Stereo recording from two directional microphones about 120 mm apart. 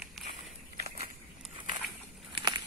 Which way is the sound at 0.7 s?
75° right (ahead or behind).